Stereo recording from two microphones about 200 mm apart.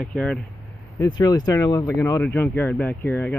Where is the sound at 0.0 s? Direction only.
5° left (ahead or behind).